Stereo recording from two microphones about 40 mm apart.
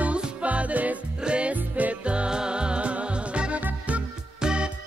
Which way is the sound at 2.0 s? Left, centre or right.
Right.